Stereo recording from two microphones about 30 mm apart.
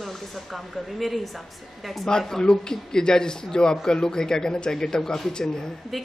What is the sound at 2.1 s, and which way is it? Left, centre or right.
A man's voice, centre.